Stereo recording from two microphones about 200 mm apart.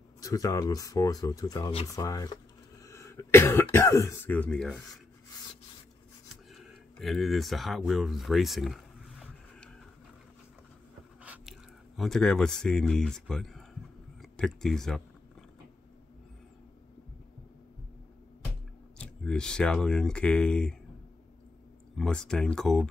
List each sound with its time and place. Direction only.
0.2 s speech: 15° left (ahead or behind)
6.5 s a sound: centre (ahead or behind)
12.0 s speech: centre (ahead or behind)
18.9 s speech: 5° left (ahead or behind)
21.9 s speech: 5° left (ahead or behind)